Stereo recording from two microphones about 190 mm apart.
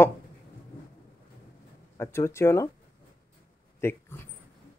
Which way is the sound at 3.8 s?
10° left (ahead or behind).